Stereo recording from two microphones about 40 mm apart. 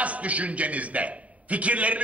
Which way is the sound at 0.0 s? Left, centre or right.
Right.